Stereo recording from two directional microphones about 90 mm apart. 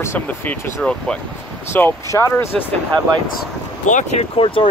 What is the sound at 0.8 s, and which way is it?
Speech, 10° left (ahead or behind).